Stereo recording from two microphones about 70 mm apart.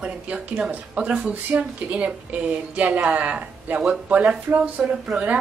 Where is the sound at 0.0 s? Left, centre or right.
Centre.